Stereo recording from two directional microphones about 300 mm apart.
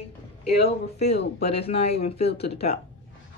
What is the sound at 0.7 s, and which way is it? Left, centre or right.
Speech, left.